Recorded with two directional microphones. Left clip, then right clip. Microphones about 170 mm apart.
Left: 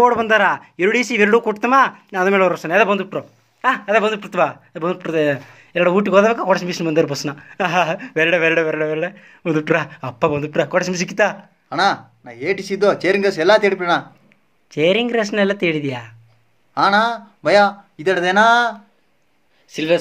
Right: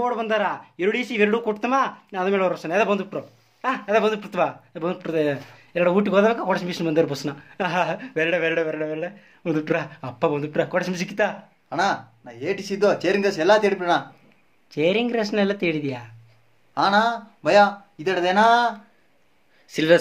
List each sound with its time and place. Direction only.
0.0 s speech: 30° left (ahead or behind)
11.7 s speech: 30° left (ahead or behind)
14.7 s speech: 15° left (ahead or behind); by 18.8 s 35° left (ahead or behind)
19.7 s speech: 20° right (ahead or behind)